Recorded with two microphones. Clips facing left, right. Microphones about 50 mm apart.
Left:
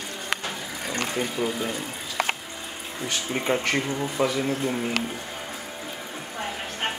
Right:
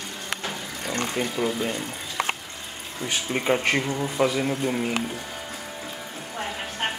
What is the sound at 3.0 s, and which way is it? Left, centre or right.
Speech, centre.